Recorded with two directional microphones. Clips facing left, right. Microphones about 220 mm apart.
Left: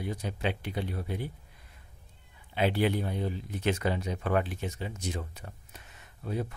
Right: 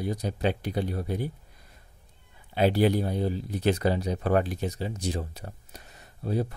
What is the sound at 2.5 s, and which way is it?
Speech, 40° right (ahead or behind).